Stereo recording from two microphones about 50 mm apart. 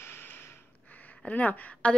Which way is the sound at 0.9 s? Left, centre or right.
Left.